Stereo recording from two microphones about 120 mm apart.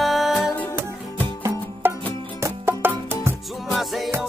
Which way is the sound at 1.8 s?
20° right (ahead or behind).